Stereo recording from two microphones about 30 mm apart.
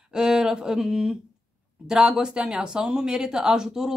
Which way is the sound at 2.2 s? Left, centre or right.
Right.